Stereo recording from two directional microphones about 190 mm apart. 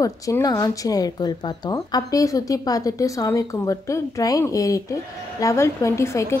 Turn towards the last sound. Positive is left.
turn(degrees=15)  # may be behind; listen again after turning